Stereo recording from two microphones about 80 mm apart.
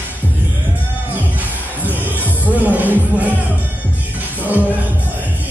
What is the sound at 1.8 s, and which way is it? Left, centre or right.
Music, right.